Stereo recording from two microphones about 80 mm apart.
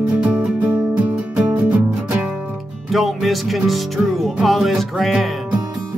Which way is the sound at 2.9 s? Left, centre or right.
Centre.